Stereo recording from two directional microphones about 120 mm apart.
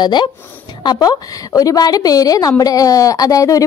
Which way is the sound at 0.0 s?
40° left (ahead or behind).